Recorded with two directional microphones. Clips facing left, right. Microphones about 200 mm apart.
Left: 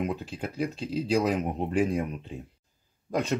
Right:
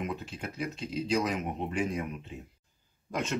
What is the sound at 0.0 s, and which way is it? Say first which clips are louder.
Speech: left 5 dB; 35° left (ahead or behind).